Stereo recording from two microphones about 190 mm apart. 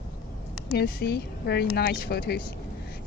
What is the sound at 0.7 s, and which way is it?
Speech, 55° left (ahead or behind).